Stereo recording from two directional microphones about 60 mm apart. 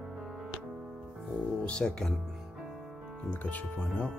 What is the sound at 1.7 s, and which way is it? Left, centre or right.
Speech, centre.